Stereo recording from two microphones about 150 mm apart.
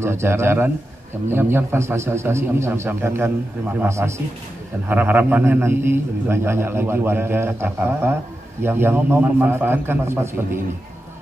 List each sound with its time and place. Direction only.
0.0 s a man's voice: 15° right (ahead or behind)